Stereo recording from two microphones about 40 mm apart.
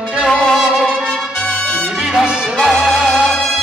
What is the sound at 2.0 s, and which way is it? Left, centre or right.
Music, centre.